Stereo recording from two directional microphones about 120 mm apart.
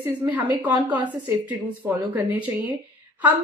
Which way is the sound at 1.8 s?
10° right (ahead or behind).